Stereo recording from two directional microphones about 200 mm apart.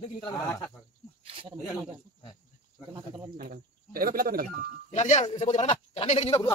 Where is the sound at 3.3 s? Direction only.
50° right (ahead or behind).